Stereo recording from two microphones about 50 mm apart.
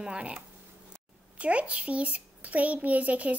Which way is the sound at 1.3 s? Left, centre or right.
Right.